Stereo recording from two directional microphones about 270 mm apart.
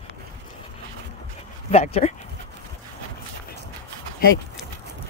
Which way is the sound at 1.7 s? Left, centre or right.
Left.